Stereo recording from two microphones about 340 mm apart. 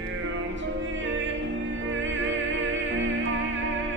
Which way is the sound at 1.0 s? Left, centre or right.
Right.